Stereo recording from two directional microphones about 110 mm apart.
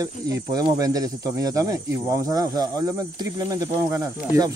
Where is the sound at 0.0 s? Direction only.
35° right (ahead or behind).